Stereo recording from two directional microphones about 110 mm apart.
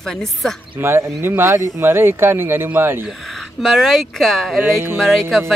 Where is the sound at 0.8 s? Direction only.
20° right (ahead or behind).